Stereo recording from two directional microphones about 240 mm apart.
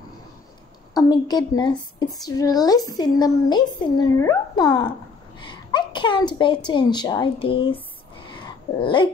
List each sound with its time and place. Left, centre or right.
0.9 s a woman's voice: centre
8.7 s dog: left